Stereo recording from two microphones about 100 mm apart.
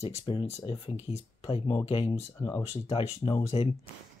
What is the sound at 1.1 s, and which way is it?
Speech, 35° left (ahead or behind).